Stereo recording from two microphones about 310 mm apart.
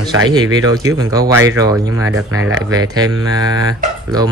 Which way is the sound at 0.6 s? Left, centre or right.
Centre.